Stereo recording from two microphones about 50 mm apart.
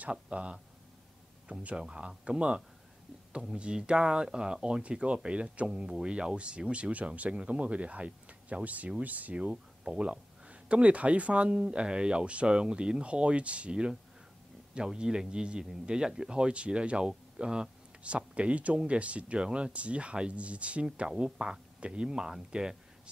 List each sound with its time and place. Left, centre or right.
0.1 s speech: right